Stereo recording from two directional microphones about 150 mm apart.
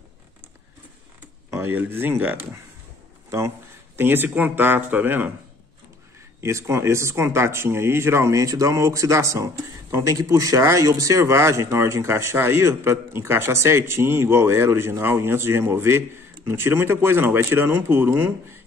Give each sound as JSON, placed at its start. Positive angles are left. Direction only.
{"t": 1.5, "sound": "speech", "side_deg": -15}
{"t": 6.4, "sound": "speech", "side_deg": -20}